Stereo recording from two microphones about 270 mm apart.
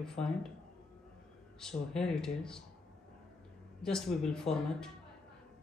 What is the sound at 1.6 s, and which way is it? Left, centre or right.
Speech, centre.